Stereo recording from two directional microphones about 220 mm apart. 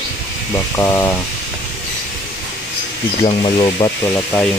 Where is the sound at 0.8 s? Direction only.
10° left (ahead or behind).